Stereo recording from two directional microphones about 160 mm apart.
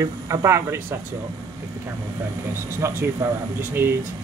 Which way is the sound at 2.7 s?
15° right (ahead or behind).